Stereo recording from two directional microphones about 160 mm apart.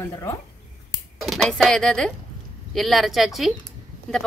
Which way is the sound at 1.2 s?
Centre (ahead or behind).